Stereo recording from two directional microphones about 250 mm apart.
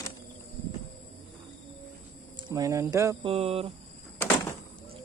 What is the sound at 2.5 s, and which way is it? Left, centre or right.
Speech, centre.